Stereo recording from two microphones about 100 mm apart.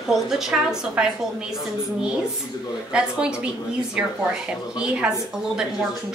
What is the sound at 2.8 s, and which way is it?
A woman's voice, 10° right (ahead or behind).